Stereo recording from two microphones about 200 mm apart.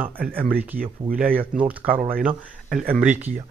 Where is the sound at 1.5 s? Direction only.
5° right (ahead or behind).